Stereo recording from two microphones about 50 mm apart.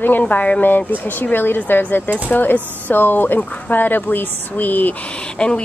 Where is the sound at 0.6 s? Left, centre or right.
Left.